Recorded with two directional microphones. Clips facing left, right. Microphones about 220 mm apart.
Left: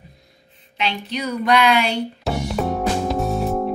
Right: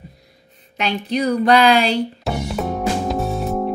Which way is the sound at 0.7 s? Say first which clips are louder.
Right 5 dB; 40° right (ahead or behind).